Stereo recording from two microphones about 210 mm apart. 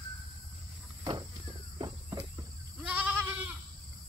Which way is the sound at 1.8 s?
15° right (ahead or behind).